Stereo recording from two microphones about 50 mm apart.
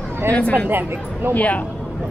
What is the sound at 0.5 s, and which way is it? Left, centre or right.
Speech, right.